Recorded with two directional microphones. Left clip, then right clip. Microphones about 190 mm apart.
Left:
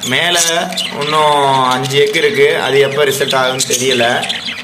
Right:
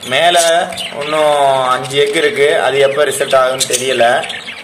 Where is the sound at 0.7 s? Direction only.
5° left (ahead or behind).